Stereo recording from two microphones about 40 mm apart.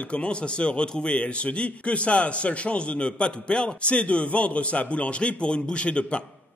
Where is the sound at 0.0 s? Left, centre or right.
Left.